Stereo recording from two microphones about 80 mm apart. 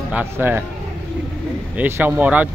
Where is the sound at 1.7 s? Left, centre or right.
Right.